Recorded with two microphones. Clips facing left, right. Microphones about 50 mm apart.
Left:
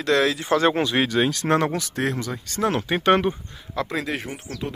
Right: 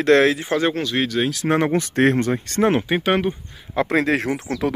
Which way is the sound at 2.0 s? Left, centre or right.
Right.